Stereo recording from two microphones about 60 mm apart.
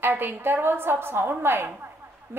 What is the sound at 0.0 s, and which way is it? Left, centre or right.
A woman's voice, right.